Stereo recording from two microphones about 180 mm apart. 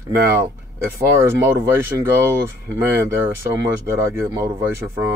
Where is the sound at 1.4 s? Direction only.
15° right (ahead or behind).